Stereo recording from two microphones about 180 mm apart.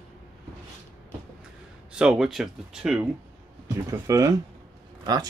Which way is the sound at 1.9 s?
5° right (ahead or behind).